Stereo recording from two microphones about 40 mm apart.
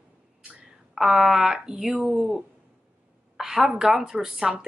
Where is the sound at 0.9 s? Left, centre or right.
Centre.